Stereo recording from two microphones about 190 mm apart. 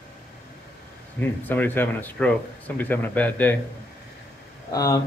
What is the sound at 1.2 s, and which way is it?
A man's voice, 10° left (ahead or behind).